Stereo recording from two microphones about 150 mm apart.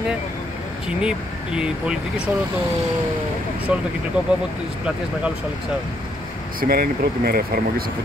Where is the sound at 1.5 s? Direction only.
5° right (ahead or behind).